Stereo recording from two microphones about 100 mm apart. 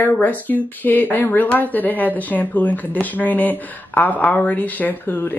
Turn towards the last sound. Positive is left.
turn(degrees=20)  # may be behind; listen again after turning